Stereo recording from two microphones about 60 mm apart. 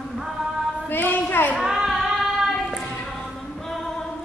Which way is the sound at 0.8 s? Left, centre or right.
Left.